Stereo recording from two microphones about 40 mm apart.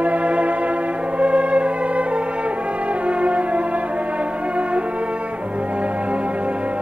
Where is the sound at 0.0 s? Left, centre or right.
Right.